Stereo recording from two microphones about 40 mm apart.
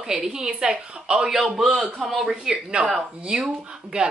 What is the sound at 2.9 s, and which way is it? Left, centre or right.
Speech, centre.